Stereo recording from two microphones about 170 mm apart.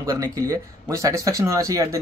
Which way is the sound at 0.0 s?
20° right (ahead or behind).